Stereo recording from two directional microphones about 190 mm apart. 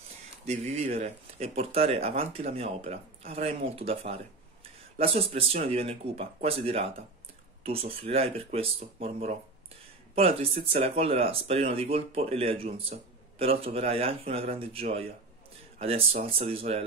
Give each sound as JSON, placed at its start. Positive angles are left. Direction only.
{"t": 0.5, "sound": "speech", "side_deg": -35}